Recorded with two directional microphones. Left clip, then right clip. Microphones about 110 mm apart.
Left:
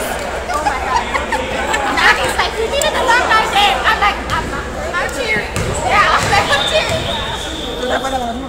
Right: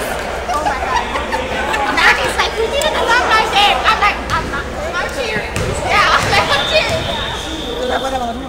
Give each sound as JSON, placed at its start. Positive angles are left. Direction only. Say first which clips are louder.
{"t": 1.7, "sound": "chatter", "louder": "even", "side_deg": 45}
{"t": 5.9, "sound": "children playing", "louder": "even", "side_deg": 45}